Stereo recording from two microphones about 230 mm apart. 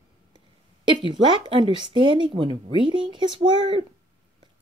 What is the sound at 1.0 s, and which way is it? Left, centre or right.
Speech, right.